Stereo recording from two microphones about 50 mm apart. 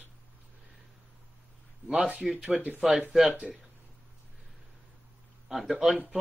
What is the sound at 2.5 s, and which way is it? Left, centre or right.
Speech, right.